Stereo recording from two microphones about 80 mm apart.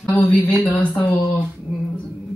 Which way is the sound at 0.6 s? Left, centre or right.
Centre.